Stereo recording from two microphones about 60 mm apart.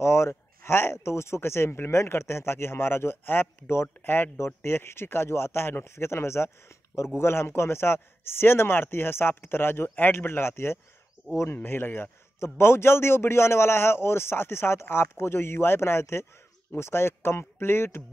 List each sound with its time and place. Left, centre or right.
0.0 s a man's voice: left